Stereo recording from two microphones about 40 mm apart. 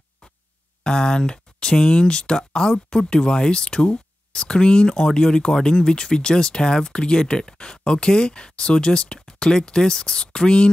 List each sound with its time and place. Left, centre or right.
0.8 s speech: centre